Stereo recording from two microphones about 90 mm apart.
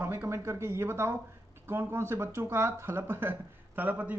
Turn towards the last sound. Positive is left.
turn(degrees=-20)  # may be behind; listen again after turning